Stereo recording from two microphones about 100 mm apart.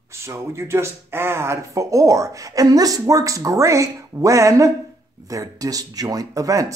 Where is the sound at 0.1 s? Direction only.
25° right (ahead or behind).